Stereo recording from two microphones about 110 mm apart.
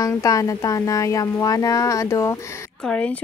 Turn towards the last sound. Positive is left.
turn(degrees=10)  # may be behind; listen again after turning